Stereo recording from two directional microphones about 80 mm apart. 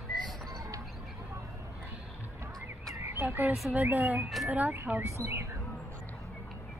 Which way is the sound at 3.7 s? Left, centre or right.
Right.